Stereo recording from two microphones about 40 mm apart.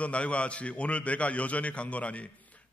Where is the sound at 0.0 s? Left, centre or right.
Left.